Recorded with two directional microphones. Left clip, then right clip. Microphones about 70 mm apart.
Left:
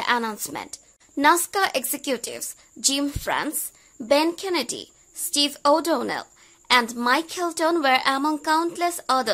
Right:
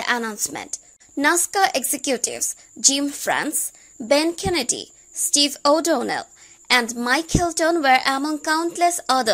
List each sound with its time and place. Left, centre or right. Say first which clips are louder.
0.0 s a woman's voice: even; right
3.2 s a woman's voice: right 3 dB; right